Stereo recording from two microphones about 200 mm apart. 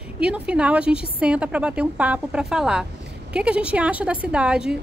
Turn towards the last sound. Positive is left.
turn(degrees=-5)  # may be behind; listen again after turning